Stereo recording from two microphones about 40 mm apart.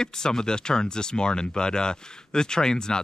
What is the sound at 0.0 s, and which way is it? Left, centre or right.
Speech, centre.